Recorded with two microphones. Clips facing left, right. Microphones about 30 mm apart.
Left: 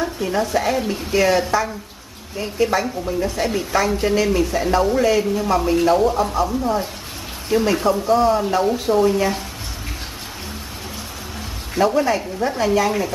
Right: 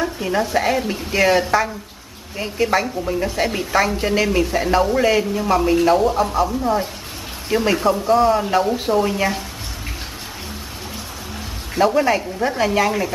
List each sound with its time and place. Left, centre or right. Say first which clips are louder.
0.0 s a woman's voice: right 1 dB; centre
11.7 s a woman's voice: right 1 dB; centre